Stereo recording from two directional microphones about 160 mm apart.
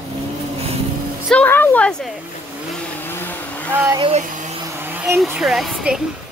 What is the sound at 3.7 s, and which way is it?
Speech, 10° right (ahead or behind).